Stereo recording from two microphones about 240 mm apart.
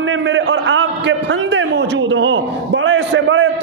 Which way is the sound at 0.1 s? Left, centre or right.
Right.